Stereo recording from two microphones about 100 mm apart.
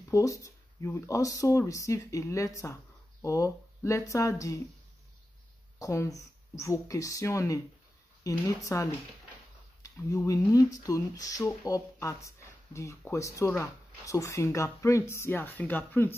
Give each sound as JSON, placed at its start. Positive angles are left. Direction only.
{"t": 0.1, "sound": "speech", "side_deg": 35}
{"t": 5.8, "sound": "speech", "side_deg": 35}
{"t": 9.8, "sound": "speech", "side_deg": 35}